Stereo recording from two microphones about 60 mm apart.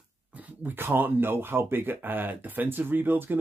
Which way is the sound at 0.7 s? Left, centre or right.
Right.